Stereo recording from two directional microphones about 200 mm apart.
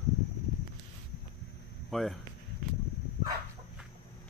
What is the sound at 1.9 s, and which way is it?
Speech, centre (ahead or behind).